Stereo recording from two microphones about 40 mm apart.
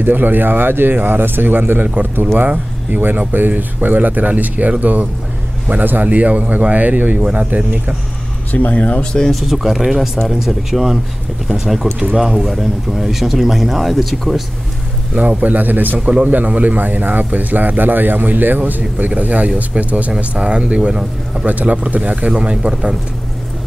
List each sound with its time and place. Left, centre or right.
0.0 s a man's voice: right
8.5 s speech: left
9.3 s speech: centre
15.4 s speech: right
16.3 s speech: right
20.2 s speech: right